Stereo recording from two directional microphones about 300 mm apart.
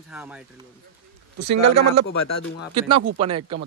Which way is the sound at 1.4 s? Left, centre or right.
Right.